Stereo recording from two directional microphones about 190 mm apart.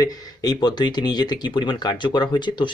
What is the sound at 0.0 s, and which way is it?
Speech, 20° left (ahead or behind).